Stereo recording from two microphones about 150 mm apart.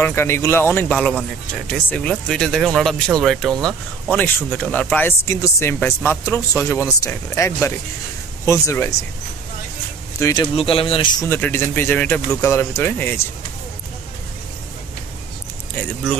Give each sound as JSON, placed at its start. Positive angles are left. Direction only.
{"t": 0.0, "sound": "speech", "side_deg": 15}
{"t": 10.1, "sound": "speech", "side_deg": 25}
{"t": 10.5, "sound": "speech", "side_deg": 40}
{"t": 11.2, "sound": "speech", "side_deg": 15}
{"t": 15.8, "sound": "speech", "side_deg": 5}